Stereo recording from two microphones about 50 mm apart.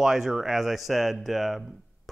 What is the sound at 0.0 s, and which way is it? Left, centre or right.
Speech, centre.